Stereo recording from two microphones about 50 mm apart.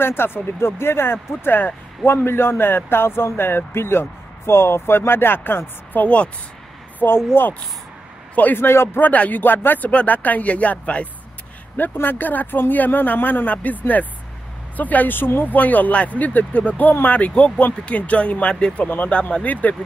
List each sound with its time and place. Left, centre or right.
0.0 s speech: left
6.0 s speech: left
7.0 s speech: left
8.5 s speech: left
9.0 s speech: left
9.4 s speech: left
9.8 s speech: left
11.7 s speech: left